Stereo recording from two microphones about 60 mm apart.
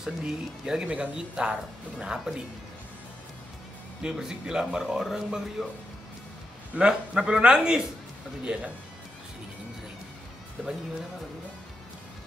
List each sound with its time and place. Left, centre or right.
0.0 s speech: centre
4.0 s speech: centre
6.7 s speech: centre